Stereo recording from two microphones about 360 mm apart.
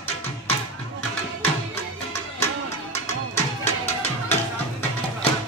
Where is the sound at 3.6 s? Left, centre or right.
Centre.